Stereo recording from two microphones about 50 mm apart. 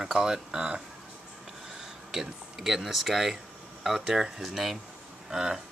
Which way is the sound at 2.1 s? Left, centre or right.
Centre.